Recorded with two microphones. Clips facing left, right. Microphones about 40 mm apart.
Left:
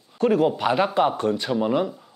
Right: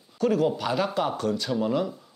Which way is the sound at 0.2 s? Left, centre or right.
Left.